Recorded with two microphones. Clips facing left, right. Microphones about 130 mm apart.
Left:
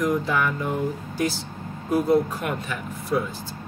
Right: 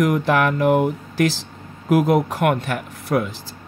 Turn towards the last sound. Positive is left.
turn(degrees=-70)  # may be behind; listen again after turning